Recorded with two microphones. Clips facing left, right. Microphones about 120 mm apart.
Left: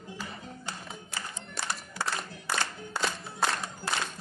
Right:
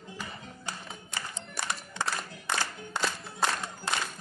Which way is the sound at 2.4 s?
20° right (ahead or behind).